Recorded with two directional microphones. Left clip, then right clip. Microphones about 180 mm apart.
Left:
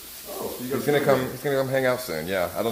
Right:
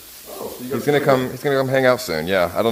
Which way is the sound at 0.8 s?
55° right (ahead or behind).